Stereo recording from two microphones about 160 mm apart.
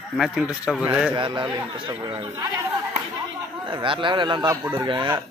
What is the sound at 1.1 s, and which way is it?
Speech, 30° right (ahead or behind).